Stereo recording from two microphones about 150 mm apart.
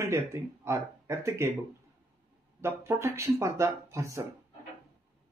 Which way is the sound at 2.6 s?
20° right (ahead or behind).